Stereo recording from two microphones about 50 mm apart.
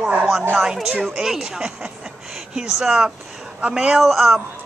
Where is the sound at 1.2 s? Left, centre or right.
Centre.